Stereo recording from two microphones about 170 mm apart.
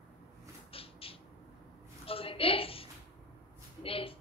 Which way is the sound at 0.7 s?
35° left (ahead or behind).